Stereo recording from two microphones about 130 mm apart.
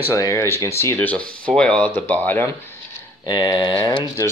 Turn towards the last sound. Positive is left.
turn(degrees=35)  # may be behind; listen again after turning